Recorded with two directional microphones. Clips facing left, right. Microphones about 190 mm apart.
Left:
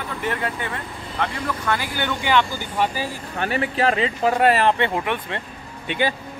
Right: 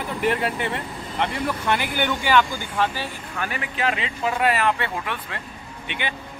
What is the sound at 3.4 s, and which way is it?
Speech, 35° left (ahead or behind).